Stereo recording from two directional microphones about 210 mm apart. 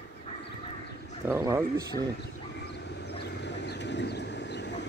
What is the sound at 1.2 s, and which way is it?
Duck, 15° right (ahead or behind).